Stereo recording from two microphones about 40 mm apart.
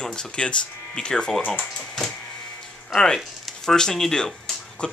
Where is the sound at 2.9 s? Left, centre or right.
Centre.